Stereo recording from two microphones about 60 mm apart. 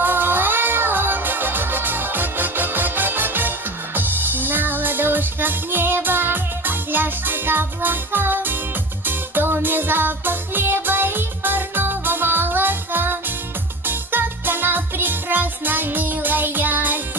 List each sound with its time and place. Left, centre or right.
0.0 s music: right